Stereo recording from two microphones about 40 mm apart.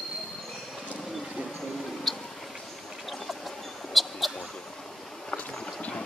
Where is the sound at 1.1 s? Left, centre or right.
Centre.